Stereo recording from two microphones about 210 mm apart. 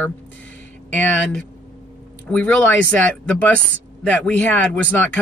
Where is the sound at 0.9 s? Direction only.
5° left (ahead or behind).